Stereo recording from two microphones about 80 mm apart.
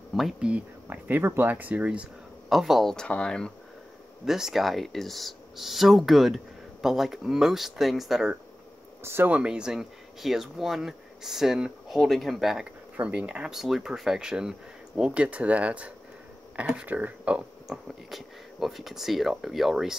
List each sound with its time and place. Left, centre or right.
0.4 s speech: centre
2.5 s speech: centre
4.3 s speech: centre
9.0 s speech: right
9.3 s speech: centre
12.9 s speech: centre
13.5 s speech: centre
17.6 s speech: centre